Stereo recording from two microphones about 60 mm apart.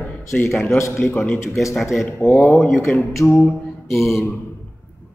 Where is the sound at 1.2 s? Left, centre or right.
Centre.